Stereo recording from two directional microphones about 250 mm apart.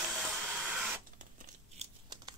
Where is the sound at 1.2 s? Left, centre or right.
Right.